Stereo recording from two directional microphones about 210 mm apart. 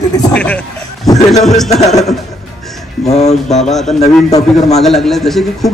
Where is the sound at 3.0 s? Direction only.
30° left (ahead or behind).